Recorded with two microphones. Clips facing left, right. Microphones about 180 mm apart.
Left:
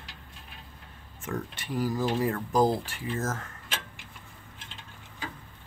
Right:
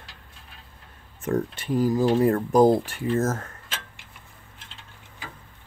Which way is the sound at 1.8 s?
20° right (ahead or behind).